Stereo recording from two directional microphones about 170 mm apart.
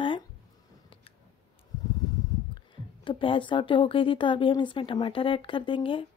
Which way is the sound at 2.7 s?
30° left (ahead or behind).